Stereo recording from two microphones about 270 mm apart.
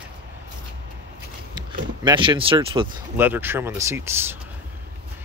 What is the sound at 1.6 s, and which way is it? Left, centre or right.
Speech, centre.